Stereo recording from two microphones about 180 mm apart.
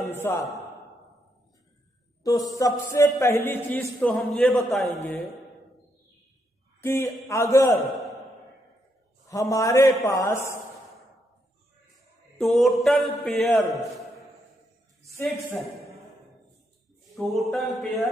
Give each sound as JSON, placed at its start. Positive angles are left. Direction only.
{"t": 0.2, "sound": "speech", "side_deg": 15}
{"t": 2.2, "sound": "a man's voice", "side_deg": 20}
{"t": 7.2, "sound": "speech", "side_deg": 15}
{"t": 9.3, "sound": "speech", "side_deg": 15}
{"t": 12.4, "sound": "a man's voice", "side_deg": 0}
{"t": 15.0, "sound": "speech", "side_deg": 15}
{"t": 17.1, "sound": "a man's voice", "side_deg": 0}